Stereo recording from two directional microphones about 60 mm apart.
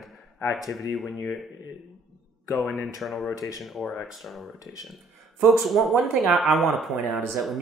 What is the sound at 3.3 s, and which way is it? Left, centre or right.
Speech, left.